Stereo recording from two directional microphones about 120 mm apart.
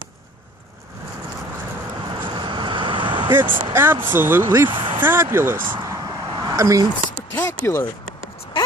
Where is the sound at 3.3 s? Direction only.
15° right (ahead or behind).